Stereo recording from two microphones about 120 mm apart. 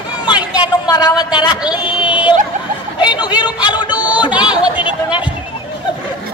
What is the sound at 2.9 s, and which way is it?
Speech, 35° left (ahead or behind).